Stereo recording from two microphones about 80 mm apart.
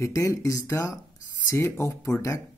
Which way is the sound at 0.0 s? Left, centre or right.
Left.